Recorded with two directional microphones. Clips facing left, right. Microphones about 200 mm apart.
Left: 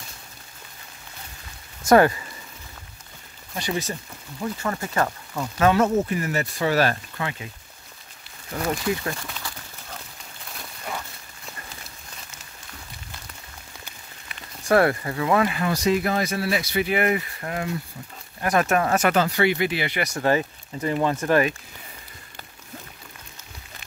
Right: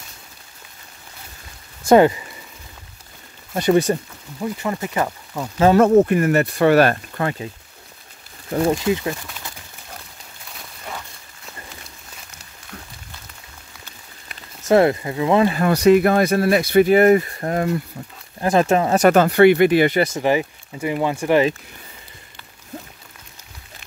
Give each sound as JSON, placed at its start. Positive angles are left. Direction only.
{"t": 1.9, "sound": "speech", "side_deg": -20}
{"t": 3.5, "sound": "speech", "side_deg": -55}
{"t": 4.4, "sound": "speech", "side_deg": -15}
{"t": 5.8, "sound": "speech", "side_deg": -60}
{"t": 8.6, "sound": "speech", "side_deg": -20}
{"t": 14.6, "sound": "speech", "side_deg": -20}
{"t": 15.7, "sound": "speech", "side_deg": -60}
{"t": 18.4, "sound": "speech", "side_deg": -30}
{"t": 19.0, "sound": "speech", "side_deg": -55}
{"t": 20.2, "sound": "speech", "side_deg": -15}